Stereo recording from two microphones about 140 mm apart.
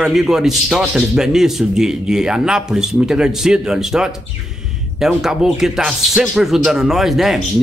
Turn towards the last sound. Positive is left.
turn(degrees=0)  # may be behind; listen again after turning